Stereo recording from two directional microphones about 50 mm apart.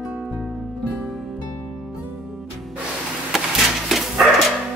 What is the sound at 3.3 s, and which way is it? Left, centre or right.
Dog, centre.